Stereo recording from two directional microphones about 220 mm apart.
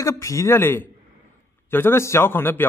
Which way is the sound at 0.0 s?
15° left (ahead or behind).